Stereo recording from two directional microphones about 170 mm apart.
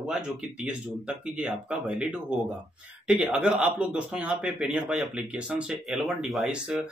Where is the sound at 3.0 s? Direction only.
10° right (ahead or behind).